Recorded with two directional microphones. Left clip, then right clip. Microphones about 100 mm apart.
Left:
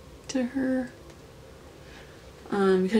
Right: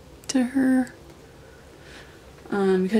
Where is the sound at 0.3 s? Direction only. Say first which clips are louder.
Right 6 dB; 55° right (ahead or behind).